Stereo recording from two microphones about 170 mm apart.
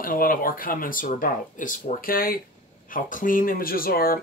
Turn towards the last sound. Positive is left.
turn(degrees=60)  # may be behind; listen again after turning